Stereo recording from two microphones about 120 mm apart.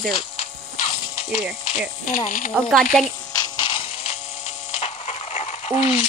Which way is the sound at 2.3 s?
90° left.